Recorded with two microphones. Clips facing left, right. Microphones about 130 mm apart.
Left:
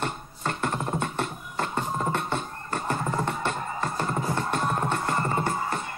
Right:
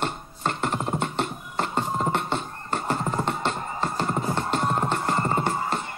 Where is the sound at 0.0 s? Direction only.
25° right (ahead or behind).